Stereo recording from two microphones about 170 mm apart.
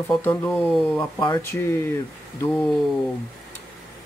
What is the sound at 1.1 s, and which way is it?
Speech, 25° left (ahead or behind).